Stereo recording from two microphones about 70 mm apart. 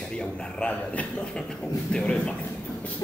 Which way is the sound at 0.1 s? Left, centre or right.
Centre.